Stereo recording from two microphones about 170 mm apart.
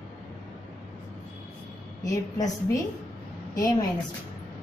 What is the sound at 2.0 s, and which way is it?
Speech, 20° left (ahead or behind).